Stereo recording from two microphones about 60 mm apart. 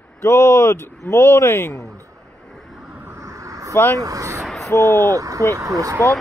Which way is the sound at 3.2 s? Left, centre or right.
Right.